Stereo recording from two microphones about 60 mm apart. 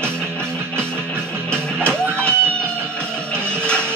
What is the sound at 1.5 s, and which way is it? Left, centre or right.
Music, centre.